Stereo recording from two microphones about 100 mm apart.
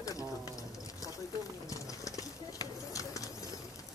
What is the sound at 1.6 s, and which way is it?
Bird, 35° left (ahead or behind).